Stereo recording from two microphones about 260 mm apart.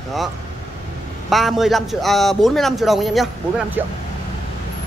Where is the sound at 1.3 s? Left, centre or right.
Centre.